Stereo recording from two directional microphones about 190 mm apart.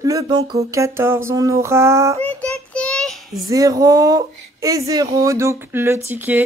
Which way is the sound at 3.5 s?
20° right (ahead or behind).